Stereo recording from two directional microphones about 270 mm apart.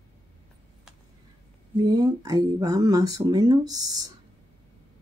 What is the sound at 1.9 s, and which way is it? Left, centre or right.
Speech, centre.